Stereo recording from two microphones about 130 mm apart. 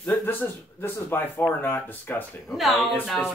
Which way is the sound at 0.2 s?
15° left (ahead or behind).